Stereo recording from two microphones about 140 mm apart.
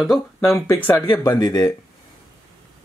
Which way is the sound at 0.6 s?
15° left (ahead or behind).